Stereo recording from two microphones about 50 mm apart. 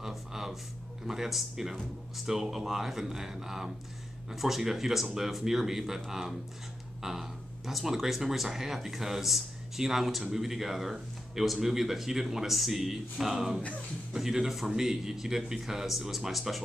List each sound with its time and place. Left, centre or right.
0.0 s speech: centre